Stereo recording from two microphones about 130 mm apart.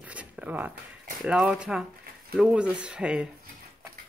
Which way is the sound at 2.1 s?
90° right.